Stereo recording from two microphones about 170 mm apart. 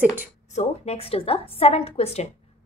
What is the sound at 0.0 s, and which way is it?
Speech, 10° right (ahead or behind).